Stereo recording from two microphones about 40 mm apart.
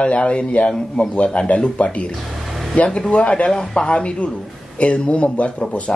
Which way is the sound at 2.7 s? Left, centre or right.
Left.